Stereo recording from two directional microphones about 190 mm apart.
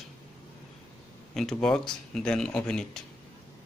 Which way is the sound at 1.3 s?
Centre (ahead or behind).